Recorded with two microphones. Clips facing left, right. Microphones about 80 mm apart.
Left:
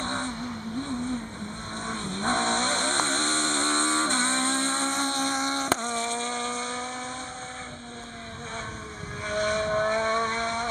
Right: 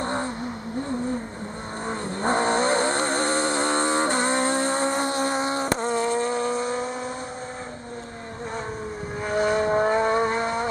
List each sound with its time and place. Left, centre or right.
0.0 s vehicle: centre
1.9 s vehicle: centre
9.2 s vehicle: right